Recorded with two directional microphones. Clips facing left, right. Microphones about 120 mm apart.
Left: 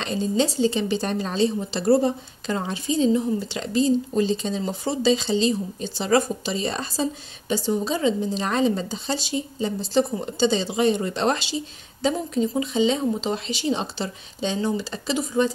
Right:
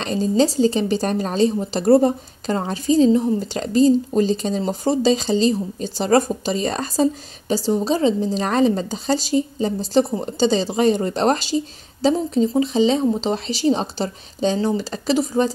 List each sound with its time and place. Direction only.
0.0 s speech: 40° right (ahead or behind)